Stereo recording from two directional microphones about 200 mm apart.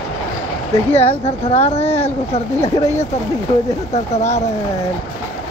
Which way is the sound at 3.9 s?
35° left (ahead or behind).